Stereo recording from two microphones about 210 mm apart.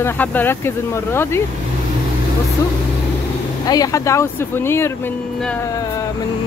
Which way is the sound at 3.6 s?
15° left (ahead or behind).